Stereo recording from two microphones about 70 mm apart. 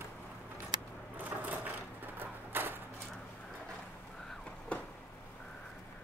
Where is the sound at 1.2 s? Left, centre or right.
Right.